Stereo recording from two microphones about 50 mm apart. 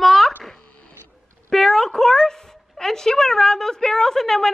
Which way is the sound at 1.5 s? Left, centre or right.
Centre.